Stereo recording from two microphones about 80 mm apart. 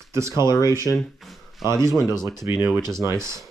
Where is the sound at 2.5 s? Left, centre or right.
Centre.